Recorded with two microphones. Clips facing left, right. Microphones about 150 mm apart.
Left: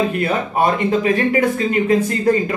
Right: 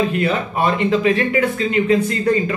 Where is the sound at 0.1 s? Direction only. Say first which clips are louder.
Even; 35° left (ahead or behind).